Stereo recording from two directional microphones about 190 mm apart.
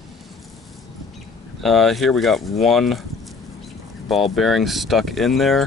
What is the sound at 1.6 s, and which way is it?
Speech, centre (ahead or behind).